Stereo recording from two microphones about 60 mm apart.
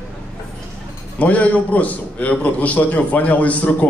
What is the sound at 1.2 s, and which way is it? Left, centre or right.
A man's voice, left.